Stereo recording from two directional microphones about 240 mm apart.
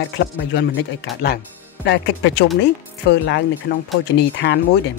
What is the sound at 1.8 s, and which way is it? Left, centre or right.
Speech, left.